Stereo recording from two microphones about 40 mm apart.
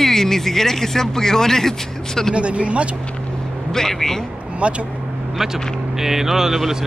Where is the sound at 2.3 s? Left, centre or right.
Right.